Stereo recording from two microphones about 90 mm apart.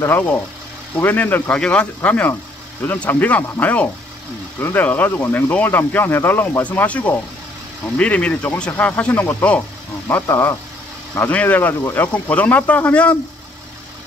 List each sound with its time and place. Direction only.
0.0 s speech: 20° left (ahead or behind)